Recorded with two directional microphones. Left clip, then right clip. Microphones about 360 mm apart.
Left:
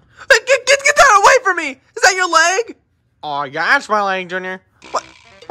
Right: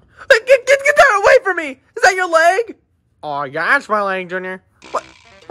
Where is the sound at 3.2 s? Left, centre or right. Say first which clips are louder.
Left 1 dB; centre.